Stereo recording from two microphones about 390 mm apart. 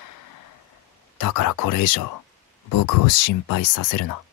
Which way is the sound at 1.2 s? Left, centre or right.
Left.